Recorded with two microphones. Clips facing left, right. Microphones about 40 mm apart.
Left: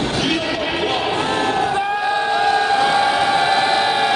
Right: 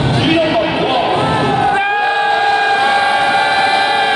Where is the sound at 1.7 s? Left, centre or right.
Right.